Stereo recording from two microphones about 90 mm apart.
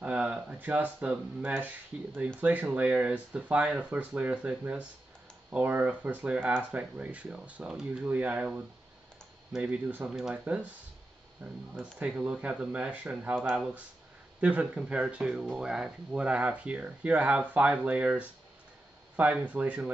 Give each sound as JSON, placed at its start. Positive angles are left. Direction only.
{"t": 0.0, "sound": "speech", "side_deg": -15}
{"t": 10.0, "sound": "speech", "side_deg": -5}